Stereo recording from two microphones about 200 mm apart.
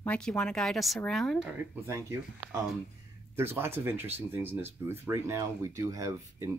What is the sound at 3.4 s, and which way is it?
Speech, 10° right (ahead or behind).